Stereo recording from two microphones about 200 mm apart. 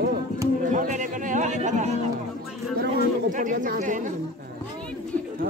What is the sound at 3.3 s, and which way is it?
Speech, 40° right (ahead or behind).